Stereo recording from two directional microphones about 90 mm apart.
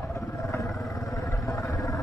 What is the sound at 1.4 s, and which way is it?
Vehicle, 35° left (ahead or behind).